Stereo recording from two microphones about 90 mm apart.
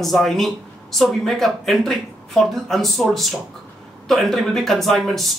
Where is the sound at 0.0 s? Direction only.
Centre (ahead or behind).